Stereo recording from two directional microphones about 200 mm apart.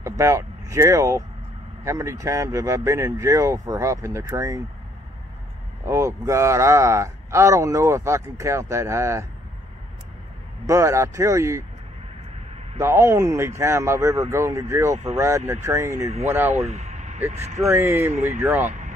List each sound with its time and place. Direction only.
0.0 s speech: 15° right (ahead or behind)
5.9 s speech: 15° right (ahead or behind)
10.7 s speech: 15° right (ahead or behind)
12.7 s speech: 15° right (ahead or behind)
16.5 s a sound: 35° right (ahead or behind)
17.4 s speech: 15° right (ahead or behind)